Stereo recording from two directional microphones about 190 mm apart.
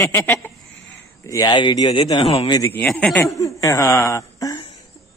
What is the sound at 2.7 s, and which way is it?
Speech, 5° left (ahead or behind).